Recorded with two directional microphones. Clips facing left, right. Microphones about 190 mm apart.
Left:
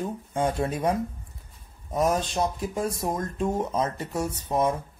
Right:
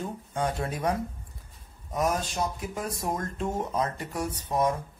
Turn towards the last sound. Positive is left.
turn(degrees=25)  # may be behind; listen again after turning